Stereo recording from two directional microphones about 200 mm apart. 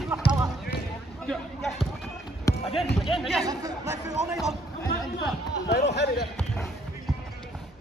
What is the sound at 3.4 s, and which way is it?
Speech, 15° right (ahead or behind).